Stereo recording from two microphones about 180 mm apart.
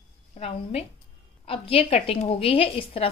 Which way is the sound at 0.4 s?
35° left (ahead or behind).